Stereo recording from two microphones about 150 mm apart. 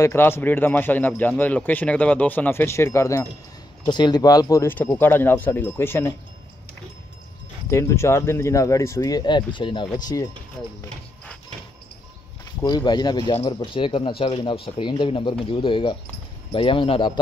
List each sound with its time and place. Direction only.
0.0 s a man's voice: 15° left (ahead or behind)
7.7 s speech: 20° left (ahead or behind)
12.6 s speech: 30° left (ahead or behind)